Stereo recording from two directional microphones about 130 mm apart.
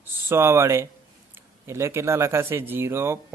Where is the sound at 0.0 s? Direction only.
20° right (ahead or behind).